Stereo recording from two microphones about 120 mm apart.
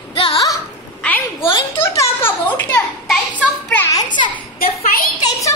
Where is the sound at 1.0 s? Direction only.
15° left (ahead or behind).